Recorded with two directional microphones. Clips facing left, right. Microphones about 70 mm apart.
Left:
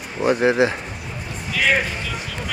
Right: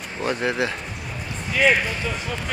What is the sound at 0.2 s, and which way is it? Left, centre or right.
Speech, centre.